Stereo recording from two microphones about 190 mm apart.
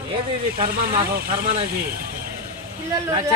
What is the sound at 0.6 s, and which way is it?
Speech, 50° right (ahead or behind).